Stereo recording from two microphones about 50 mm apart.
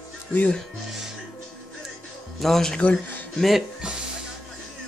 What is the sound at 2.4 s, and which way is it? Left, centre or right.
Speech, centre.